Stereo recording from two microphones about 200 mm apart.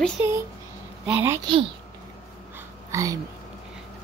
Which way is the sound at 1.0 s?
10° right (ahead or behind).